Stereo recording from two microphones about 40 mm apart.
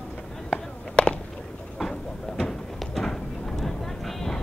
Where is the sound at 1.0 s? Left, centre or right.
Left.